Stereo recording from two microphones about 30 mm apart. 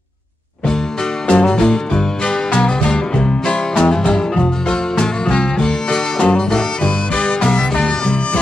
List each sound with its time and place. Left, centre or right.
1.2 s music: left